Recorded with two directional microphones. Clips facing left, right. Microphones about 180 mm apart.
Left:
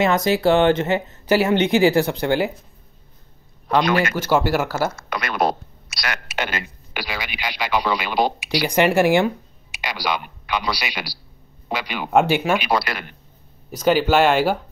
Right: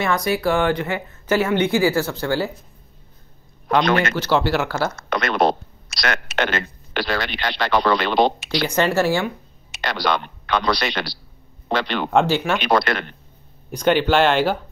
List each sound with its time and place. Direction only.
0.0 s speech: 20° left (ahead or behind)
3.6 s a man's voice: 5° left (ahead or behind)